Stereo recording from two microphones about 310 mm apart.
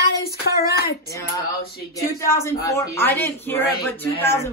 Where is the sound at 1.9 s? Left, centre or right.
Centre.